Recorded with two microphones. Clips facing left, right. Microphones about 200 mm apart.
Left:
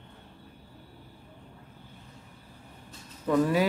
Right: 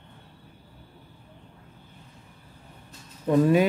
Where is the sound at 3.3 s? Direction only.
20° right (ahead or behind).